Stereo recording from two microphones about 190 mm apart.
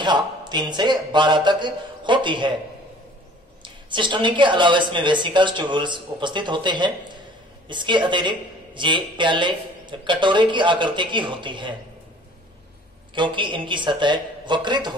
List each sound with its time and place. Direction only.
0.0 s a woman's voice: 25° right (ahead or behind)
3.6 s a woman's voice: 25° right (ahead or behind)
13.1 s a woman's voice: 25° right (ahead or behind)